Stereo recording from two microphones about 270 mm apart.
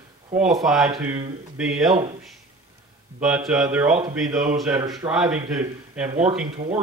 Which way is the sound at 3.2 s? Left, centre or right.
Centre.